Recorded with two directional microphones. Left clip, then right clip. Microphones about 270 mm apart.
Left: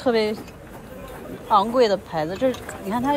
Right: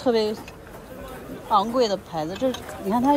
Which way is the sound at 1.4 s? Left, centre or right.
Centre.